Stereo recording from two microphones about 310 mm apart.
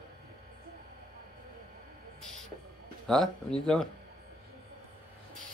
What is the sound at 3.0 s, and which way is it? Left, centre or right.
Speech, centre.